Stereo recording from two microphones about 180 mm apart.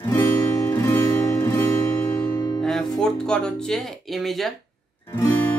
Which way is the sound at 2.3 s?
20° left (ahead or behind).